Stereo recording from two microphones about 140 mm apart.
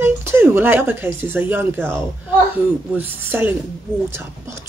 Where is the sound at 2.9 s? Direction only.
15° right (ahead or behind).